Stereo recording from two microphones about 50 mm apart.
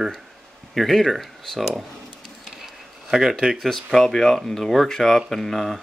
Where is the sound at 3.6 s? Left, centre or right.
Centre.